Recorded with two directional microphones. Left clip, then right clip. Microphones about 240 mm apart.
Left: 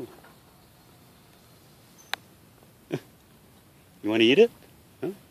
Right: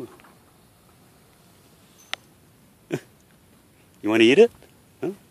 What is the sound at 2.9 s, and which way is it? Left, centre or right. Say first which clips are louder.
Dog: right 3 dB; right.